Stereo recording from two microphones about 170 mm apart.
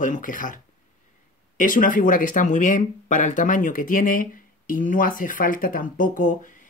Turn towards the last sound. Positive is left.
turn(degrees=50)  # may be behind; listen again after turning